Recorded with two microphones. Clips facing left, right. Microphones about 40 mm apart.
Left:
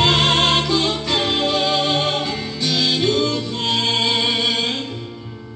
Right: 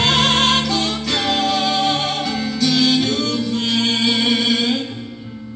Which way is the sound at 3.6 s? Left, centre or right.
Centre.